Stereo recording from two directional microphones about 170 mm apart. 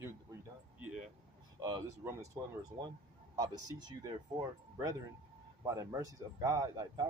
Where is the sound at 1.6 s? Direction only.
15° right (ahead or behind).